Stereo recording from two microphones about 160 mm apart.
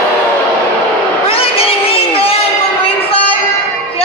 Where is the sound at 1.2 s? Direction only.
35° left (ahead or behind).